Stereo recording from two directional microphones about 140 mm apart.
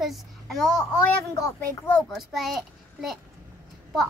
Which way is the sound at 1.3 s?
20° left (ahead or behind).